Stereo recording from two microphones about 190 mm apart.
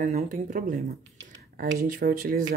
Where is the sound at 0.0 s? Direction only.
40° right (ahead or behind).